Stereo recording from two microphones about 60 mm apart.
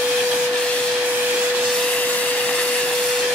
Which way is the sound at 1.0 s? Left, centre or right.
Right.